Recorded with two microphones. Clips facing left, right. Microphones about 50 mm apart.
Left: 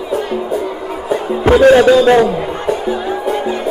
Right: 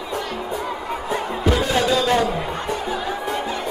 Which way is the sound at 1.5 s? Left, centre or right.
Left.